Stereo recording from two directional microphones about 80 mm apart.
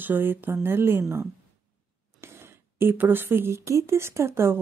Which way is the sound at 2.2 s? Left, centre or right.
Right.